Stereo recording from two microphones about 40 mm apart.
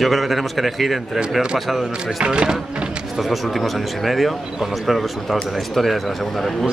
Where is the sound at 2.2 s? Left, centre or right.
Right.